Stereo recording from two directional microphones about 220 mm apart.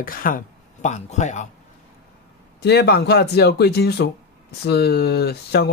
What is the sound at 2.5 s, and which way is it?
Speech, 50° left (ahead or behind).